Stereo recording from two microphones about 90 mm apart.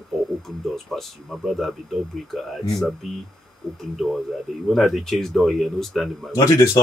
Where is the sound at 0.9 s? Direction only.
Centre (ahead or behind).